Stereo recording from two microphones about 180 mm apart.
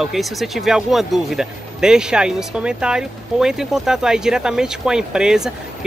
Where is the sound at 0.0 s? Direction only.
Centre (ahead or behind).